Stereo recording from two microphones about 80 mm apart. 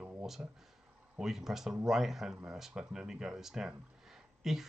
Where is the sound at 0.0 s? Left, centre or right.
Centre.